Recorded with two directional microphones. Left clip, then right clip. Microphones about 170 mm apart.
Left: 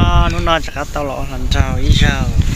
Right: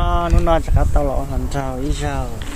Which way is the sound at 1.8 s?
10° right (ahead or behind).